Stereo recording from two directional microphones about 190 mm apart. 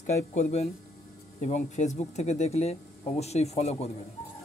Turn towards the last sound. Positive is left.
turn(degrees=35)  # may be behind; listen again after turning